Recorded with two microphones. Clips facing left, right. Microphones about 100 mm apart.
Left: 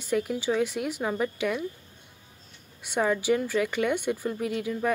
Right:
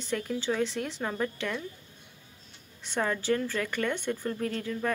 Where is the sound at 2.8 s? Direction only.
10° left (ahead or behind).